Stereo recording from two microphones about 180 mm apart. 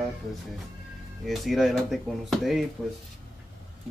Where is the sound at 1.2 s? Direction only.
Centre (ahead or behind).